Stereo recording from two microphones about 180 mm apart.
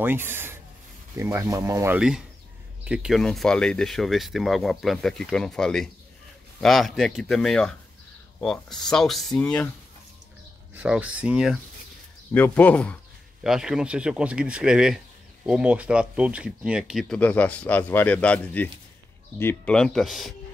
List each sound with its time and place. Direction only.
0.0 s speech: 10° right (ahead or behind)
2.0 s speech: 5° right (ahead or behind)
10.7 s speech: 10° right (ahead or behind)
12.3 s speech: 10° left (ahead or behind)
13.4 s speech: 5° right (ahead or behind)
17.2 s speech: 10° left (ahead or behind)